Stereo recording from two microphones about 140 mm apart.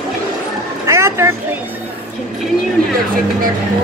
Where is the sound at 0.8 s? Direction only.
20° right (ahead or behind).